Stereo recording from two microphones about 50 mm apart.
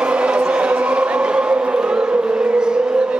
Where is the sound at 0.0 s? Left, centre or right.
Right.